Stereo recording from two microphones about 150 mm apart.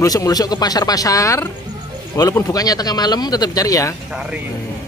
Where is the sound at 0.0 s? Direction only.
25° left (ahead or behind).